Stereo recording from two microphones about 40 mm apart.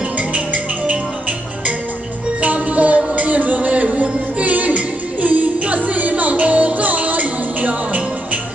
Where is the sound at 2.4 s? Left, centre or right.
Right.